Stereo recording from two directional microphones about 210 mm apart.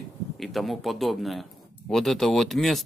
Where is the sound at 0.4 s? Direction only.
Centre (ahead or behind).